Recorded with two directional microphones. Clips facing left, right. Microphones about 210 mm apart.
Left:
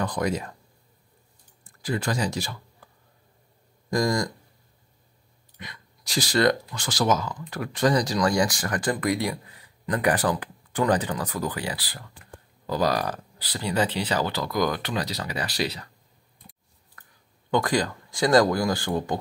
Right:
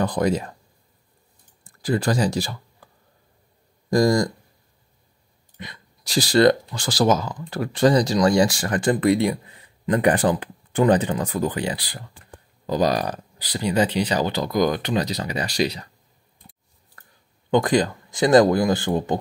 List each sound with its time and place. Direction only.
0.0 s speech: 30° right (ahead or behind)
1.8 s speech: 35° right (ahead or behind)
3.9 s speech: 30° right (ahead or behind)
5.6 s speech: 30° right (ahead or behind)
17.5 s speech: 20° right (ahead or behind)